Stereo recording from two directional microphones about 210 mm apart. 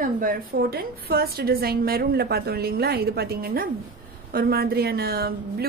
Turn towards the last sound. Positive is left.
turn(degrees=-45)  # may be behind; listen again after turning